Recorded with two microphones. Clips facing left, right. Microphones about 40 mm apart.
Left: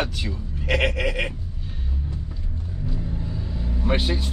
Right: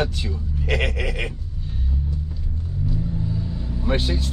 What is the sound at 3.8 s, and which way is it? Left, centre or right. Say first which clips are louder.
Vehicle: even; centre.